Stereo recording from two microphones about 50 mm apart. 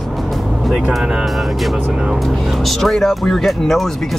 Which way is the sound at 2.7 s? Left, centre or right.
Centre.